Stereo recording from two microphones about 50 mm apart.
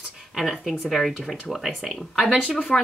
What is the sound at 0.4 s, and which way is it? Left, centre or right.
Speech, centre.